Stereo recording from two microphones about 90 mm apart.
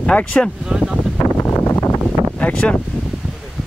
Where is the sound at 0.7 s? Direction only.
5° right (ahead or behind).